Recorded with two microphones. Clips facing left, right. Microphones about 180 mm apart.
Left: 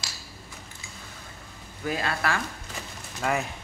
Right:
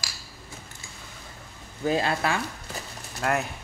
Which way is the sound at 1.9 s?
25° right (ahead or behind).